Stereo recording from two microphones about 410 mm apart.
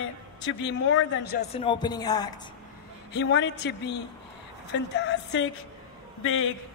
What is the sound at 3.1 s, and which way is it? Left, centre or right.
A man's voice, left.